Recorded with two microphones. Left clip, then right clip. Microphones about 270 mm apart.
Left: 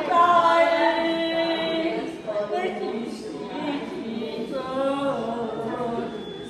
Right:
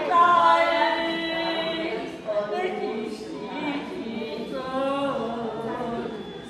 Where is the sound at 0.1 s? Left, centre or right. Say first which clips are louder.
Even; centre.